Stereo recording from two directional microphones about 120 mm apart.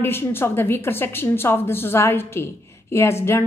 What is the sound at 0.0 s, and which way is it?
A woman's voice, 20° left (ahead or behind).